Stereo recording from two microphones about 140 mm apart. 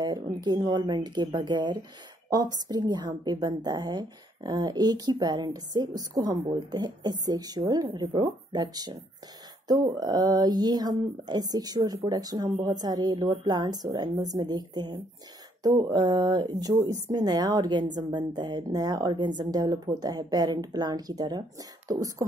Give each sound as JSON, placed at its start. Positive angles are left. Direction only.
{"t": 0.0, "sound": "speech", "side_deg": -30}